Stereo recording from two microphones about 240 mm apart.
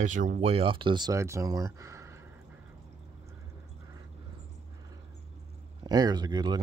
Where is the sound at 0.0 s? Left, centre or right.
Right; by 2.2 s centre.